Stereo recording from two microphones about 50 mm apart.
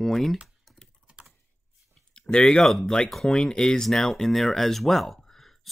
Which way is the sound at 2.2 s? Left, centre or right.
Centre.